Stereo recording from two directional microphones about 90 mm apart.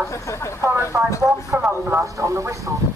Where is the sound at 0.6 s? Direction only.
35° right (ahead or behind).